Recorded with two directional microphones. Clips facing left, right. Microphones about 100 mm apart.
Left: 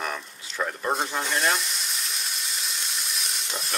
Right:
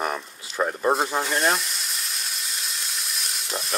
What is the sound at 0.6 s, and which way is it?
Speech, 25° right (ahead or behind).